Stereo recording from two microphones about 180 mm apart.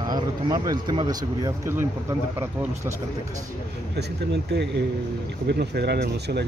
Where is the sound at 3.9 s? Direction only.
70° right (ahead or behind).